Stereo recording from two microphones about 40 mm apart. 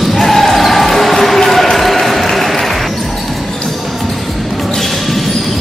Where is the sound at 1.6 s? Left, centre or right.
Centre.